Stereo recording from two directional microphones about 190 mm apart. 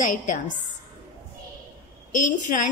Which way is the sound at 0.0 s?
45° left (ahead or behind).